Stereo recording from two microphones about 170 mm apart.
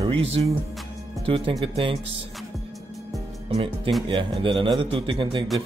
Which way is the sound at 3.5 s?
30° right (ahead or behind).